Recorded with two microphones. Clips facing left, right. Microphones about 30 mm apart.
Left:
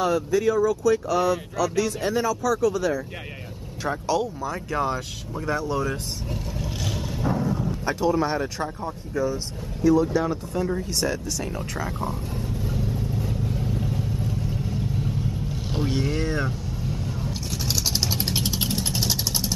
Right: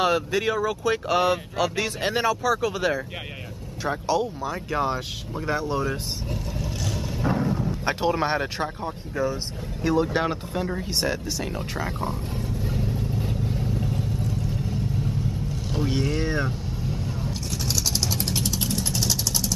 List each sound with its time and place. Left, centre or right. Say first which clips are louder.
0.0 s speech: left 1 dB; right
3.8 s speech: even; centre
6.3 s vehicle: even; centre
7.2 s a sound: right 1 dB; right
7.8 s speech: left 1 dB; right
8.8 s speech: left 3 dB; right
9.8 s speech: left 3 dB; right
10.8 s speech: even; right
13.6 s vehicle: even; centre
15.9 s vehicle: even; centre